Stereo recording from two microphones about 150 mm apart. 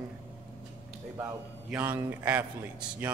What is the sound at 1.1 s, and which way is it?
A man's voice, 10° right (ahead or behind).